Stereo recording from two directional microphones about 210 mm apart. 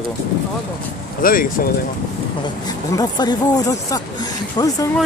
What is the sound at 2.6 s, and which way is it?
Speech, 20° left (ahead or behind).